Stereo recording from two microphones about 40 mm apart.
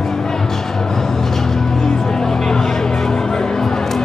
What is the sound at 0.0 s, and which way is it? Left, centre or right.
Music, centre.